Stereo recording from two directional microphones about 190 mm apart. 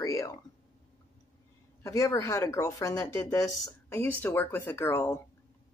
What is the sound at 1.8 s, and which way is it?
A woman's voice, 15° left (ahead or behind).